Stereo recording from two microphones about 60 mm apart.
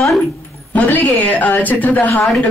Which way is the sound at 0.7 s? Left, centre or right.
Left.